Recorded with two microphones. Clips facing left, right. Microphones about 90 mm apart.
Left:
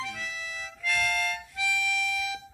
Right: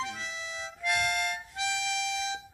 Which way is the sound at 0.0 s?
25° right (ahead or behind).